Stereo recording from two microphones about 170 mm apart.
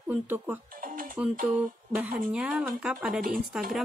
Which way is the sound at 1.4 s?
5° right (ahead or behind).